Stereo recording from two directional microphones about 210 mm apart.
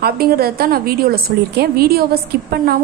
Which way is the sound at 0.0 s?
45° right (ahead or behind).